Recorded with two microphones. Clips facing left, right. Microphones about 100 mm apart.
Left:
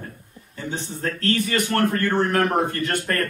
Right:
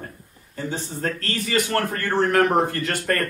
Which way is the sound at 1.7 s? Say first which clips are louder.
Left 3 dB; 10° right (ahead or behind).